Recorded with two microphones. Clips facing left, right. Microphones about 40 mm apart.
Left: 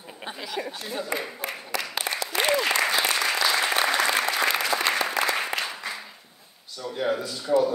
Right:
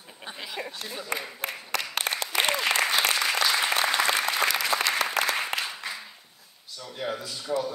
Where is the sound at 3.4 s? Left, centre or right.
Centre.